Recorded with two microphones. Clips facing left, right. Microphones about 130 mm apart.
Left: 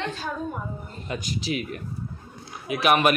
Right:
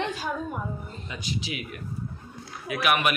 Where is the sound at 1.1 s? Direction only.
45° left (ahead or behind).